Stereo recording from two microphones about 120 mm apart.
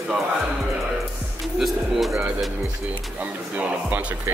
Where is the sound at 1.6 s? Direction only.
Centre (ahead or behind).